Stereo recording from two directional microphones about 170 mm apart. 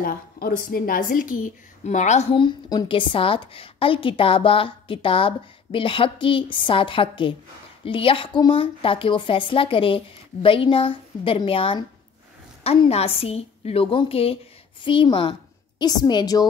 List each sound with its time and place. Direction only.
0.0 s a woman's voice: 60° left (ahead or behind)
1.9 s a woman's voice: 45° left (ahead or behind)
2.3 s a woman's voice: 30° left (ahead or behind)